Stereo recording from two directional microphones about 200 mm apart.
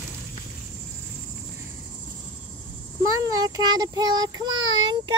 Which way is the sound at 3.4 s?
20° right (ahead or behind).